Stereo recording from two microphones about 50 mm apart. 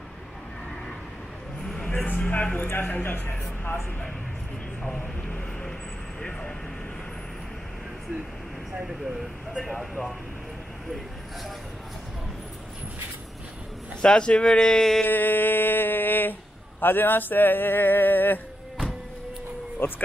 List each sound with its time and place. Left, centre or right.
2.0 s a sound: left
2.7 s speech: left
4.8 s speech: centre
8.8 s speech: centre
9.6 s speech: centre
14.0 s speech: centre
15.0 s a sound: left